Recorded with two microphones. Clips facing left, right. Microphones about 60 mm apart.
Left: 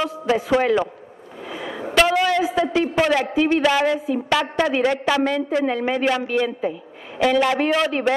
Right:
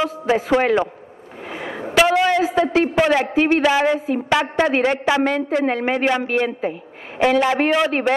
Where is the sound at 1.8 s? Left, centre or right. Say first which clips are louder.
Right 2 dB; centre.